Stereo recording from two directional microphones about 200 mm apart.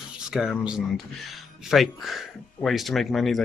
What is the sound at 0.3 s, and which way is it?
Speech, 5° right (ahead or behind).